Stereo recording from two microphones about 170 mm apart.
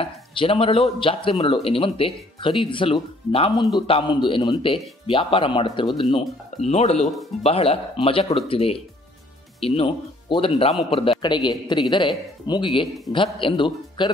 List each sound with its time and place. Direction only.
0.0 s a man's voice: 30° left (ahead or behind)